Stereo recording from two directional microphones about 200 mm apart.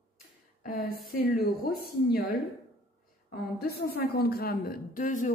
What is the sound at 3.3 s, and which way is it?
A woman's voice, 50° left (ahead or behind).